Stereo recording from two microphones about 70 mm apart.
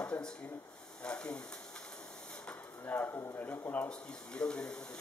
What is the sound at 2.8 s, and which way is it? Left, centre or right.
Speech, left.